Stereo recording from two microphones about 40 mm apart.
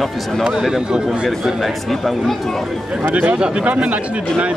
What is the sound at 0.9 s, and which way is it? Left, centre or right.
Speech, centre.